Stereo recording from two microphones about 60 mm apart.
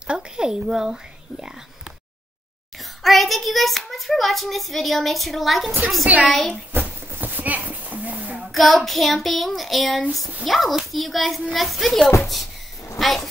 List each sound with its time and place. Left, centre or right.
0.0 s speech: centre
3.0 s hands: centre
6.0 s a woman's voice: right
6.3 s hands: centre
6.7 s clip-clop: right
8.5 s hands: centre
13.0 s speech: centre